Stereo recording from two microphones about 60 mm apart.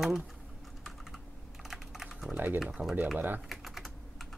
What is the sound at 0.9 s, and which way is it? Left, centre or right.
Typing, centre.